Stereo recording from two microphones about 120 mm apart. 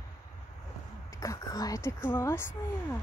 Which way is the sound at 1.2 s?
30° left (ahead or behind).